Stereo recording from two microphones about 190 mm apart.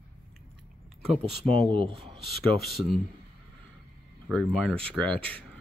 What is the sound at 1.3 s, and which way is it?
Speech, 25° right (ahead or behind).